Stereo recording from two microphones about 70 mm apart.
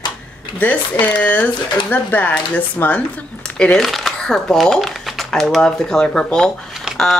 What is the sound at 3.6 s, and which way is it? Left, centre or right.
Speech, centre.